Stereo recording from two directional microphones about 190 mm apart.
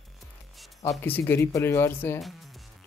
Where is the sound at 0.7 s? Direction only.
15° left (ahead or behind).